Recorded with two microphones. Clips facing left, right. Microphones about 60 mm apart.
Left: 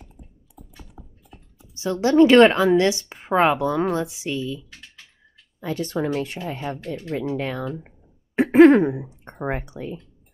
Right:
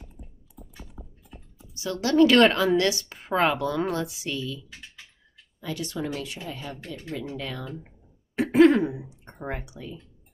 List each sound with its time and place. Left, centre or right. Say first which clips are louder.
1.8 s speech: left 4 dB; left